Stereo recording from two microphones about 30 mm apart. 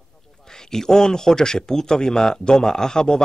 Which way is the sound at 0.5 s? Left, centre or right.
Centre.